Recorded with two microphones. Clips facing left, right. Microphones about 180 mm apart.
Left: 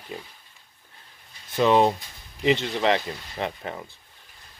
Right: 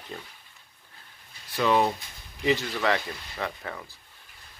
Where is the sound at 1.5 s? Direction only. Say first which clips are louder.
Left 4 dB; 20° left (ahead or behind).